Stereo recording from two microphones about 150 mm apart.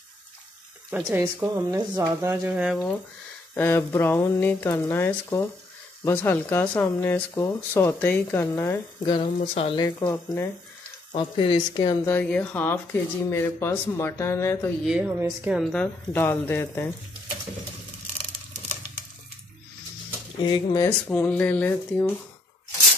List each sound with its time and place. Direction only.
0.8 s speech: 10° right (ahead or behind)
1.2 s speech: 20° right (ahead or behind)
2.5 s speech: 5° right (ahead or behind)
3.5 s speech: 15° left (ahead or behind)
9.0 s speech: 35° left (ahead or behind)
9.8 s speech: 25° left (ahead or behind)
11.1 s speech: 35° left (ahead or behind)
12.1 s speech: 10° left (ahead or behind)
14.8 s speech: 5° right (ahead or behind)
15.7 s speech: 10° left (ahead or behind)
20.4 s speech: 30° left (ahead or behind); by 22.1 s 10° left (ahead or behind)